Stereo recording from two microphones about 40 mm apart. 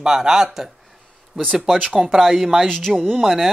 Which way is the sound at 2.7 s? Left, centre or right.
Centre.